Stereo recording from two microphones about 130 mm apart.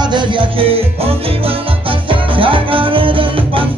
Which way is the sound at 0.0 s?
35° right (ahead or behind).